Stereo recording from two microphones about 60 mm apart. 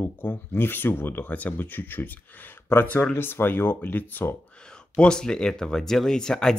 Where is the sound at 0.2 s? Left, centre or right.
Left.